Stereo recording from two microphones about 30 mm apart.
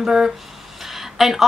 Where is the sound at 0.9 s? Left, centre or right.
Centre.